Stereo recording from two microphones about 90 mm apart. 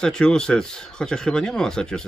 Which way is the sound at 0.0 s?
10° left (ahead or behind).